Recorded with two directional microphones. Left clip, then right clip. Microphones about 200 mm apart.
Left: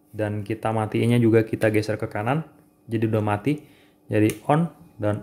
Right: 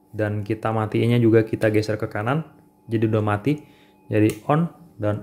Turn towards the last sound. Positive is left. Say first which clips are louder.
# right 1 dB
turn(degrees=0)  # may be behind; listen again after turning